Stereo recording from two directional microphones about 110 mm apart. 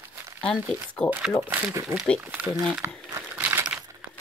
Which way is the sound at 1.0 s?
10° left (ahead or behind).